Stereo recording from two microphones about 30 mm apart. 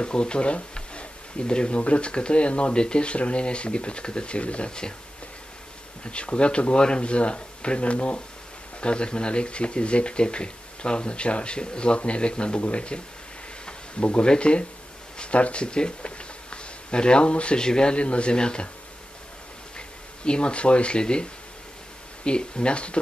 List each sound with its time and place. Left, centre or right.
0.0 s speech: left
1.8 s speech: left
6.0 s speech: left
14.2 s speech: left
15.6 s speech: left
17.6 s speech: left
17.9 s speech: left
18.3 s speech: left
20.2 s speech: left